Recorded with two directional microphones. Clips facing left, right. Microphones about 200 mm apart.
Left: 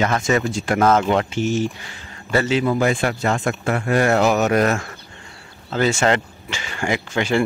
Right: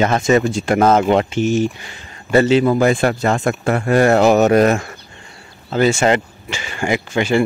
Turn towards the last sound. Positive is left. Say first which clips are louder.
# right 3 dB
turn(degrees=-10)  # may be behind; listen again after turning